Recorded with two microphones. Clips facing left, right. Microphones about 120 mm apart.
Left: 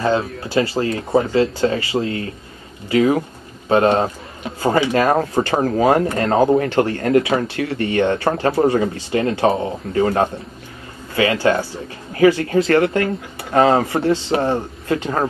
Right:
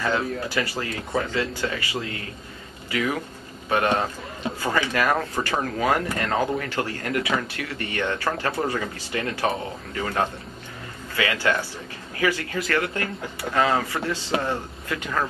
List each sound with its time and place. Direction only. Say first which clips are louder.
0.0 s speech: left 6 dB; 30° left (ahead or behind)